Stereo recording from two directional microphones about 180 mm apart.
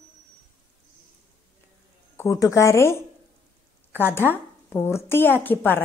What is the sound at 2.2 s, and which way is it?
A woman's voice, 15° left (ahead or behind).